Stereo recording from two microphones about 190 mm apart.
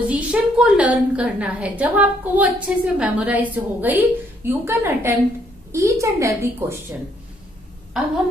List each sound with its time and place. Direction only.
0.1 s a woman's voice: 5° right (ahead or behind)